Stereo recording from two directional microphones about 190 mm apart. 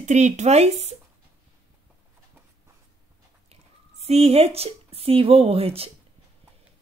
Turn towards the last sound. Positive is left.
turn(degrees=-30)  # may be behind; listen again after turning